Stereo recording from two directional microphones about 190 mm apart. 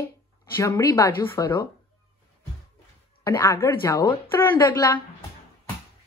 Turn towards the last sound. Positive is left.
turn(degrees=20)  # may be behind; listen again after turning